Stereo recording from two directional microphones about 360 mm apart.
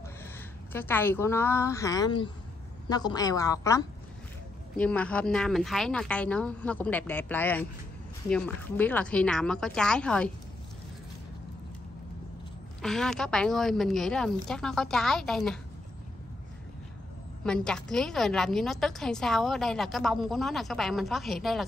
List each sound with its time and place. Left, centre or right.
0.7 s a woman's voice: centre
12.8 s a woman's voice: centre
17.5 s a woman's voice: centre